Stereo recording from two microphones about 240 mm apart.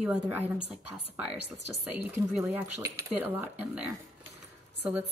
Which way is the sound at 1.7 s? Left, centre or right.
Centre.